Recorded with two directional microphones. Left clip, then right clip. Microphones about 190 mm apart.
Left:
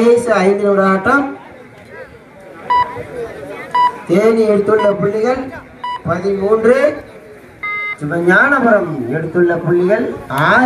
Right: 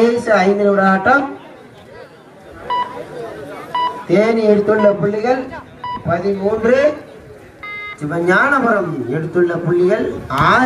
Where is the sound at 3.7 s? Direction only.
25° left (ahead or behind).